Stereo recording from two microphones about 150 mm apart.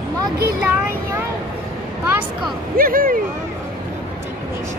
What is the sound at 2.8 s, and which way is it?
Speech, 70° right (ahead or behind).